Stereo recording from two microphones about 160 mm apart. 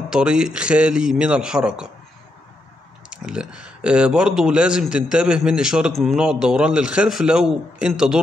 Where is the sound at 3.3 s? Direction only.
5° right (ahead or behind).